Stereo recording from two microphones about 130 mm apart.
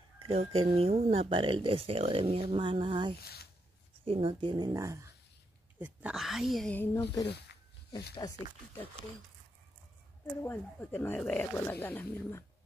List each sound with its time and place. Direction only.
0.2 s speech: 50° right (ahead or behind); by 6.1 s 15° right (ahead or behind)
6.1 s a woman's voice: centre (ahead or behind)
6.7 s speech: 15° left (ahead or behind)
8.2 s speech: 30° left (ahead or behind)
10.4 s speech: 15° left (ahead or behind)